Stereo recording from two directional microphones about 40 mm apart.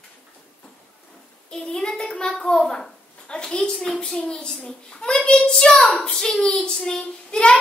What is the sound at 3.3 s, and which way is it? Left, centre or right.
A child's voice, left.